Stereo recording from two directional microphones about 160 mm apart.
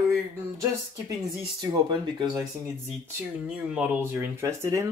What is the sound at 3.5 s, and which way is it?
Speech, 5° right (ahead or behind).